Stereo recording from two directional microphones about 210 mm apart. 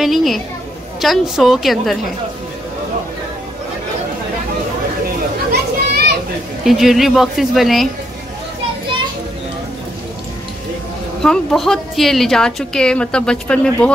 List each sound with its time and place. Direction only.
0.0 s a woman's voice: centre (ahead or behind)
5.5 s children playing: 50° right (ahead or behind)
6.6 s a woman's voice: centre (ahead or behind)
11.2 s a woman's voice: centre (ahead or behind)